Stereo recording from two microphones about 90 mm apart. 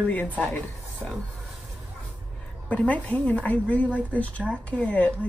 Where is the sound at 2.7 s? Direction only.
15° left (ahead or behind).